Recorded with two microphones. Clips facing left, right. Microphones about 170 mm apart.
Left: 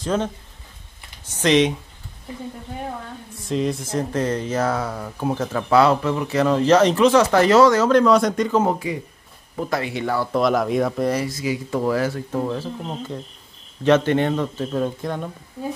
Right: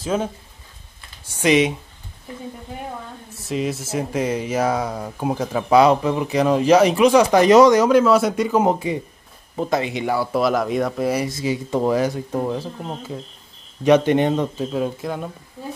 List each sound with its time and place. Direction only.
0.0 s speech: 10° right (ahead or behind)
3.4 s speech: 5° right (ahead or behind)
8.7 s speech: 25° right (ahead or behind); by 11.1 s centre (ahead or behind)
11.1 s speech: 25° right (ahead or behind)
14.7 s speech: 5° right (ahead or behind)